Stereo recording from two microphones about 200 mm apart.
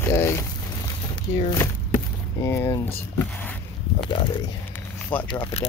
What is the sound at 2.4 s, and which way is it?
Speech, 15° left (ahead or behind).